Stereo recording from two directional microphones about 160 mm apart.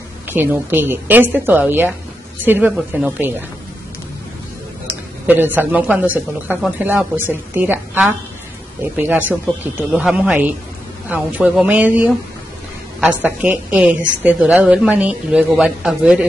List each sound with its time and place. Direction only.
0.3 s a woman's voice: 15° right (ahead or behind)
5.2 s a woman's voice: 10° right (ahead or behind)